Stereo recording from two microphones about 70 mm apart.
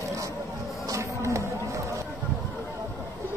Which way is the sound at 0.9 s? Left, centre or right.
Right.